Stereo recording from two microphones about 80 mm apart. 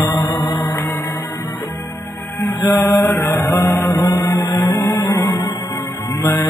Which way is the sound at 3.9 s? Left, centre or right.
Left.